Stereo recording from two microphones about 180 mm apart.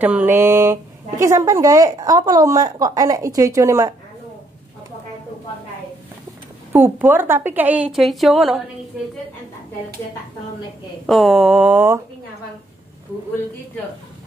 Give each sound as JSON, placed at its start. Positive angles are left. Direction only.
{"t": 0.0, "sound": "speech", "side_deg": -10}
{"t": 6.7, "sound": "a woman's voice", "side_deg": -10}
{"t": 11.1, "sound": "a sound", "side_deg": 0}